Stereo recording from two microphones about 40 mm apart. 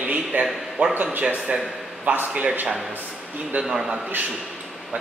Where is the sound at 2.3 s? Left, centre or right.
Right.